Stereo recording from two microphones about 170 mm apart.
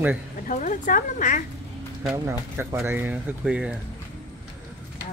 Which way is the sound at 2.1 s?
15° right (ahead or behind).